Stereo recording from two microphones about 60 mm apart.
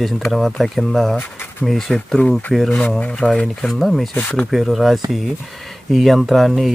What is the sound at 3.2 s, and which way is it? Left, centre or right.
Speech, centre.